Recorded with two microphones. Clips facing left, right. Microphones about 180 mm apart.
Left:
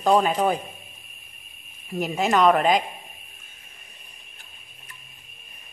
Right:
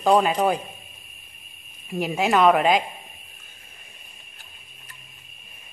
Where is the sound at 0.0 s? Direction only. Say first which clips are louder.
Right 1 dB; centre (ahead or behind).